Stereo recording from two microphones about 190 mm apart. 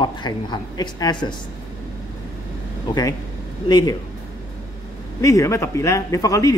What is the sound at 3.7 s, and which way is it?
Speech, 25° left (ahead or behind).